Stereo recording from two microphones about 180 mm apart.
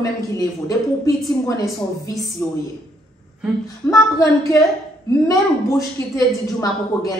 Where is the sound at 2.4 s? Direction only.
10° left (ahead or behind).